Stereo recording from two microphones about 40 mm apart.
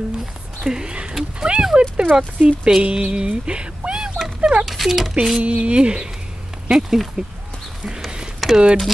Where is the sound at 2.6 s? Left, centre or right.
Right.